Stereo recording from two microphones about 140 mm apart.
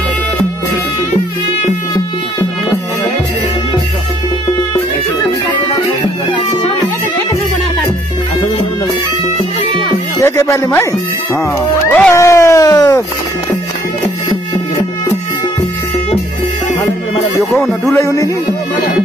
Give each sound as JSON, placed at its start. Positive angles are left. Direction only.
{"t": 10.1, "sound": "speech", "side_deg": 20}
{"t": 11.9, "sound": "cat", "side_deg": 10}
{"t": 12.2, "sound": "speech", "side_deg": 20}
{"t": 17.6, "sound": "speech", "side_deg": 20}